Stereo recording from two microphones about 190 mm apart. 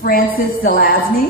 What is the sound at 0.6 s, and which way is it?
Speech, 50° left (ahead or behind).